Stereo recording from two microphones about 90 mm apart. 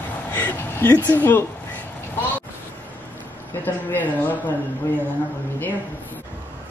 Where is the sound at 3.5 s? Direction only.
20° left (ahead or behind).